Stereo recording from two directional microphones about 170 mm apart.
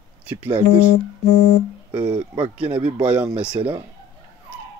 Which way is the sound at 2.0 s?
10° right (ahead or behind).